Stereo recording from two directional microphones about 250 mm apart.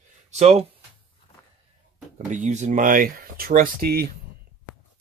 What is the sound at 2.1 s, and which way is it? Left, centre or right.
Speech, right.